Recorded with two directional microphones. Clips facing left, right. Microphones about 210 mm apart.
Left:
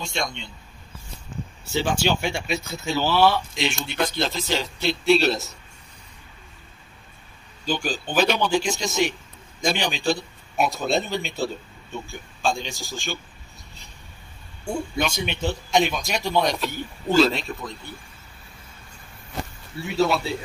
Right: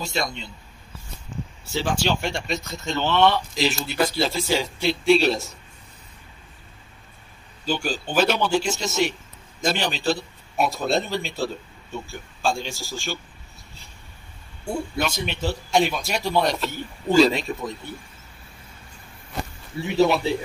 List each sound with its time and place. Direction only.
0.0 s speech: 5° right (ahead or behind)
1.7 s a man's voice: centre (ahead or behind)
7.6 s a man's voice: 10° right (ahead or behind)
14.6 s speech: 5° right (ahead or behind)
19.8 s a man's voice: 20° right (ahead or behind)